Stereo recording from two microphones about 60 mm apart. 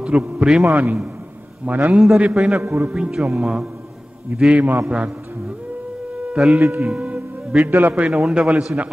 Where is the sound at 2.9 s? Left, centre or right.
Centre.